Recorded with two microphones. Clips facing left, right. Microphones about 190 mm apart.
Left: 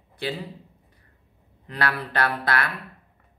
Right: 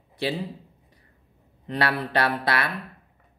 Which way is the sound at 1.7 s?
20° right (ahead or behind).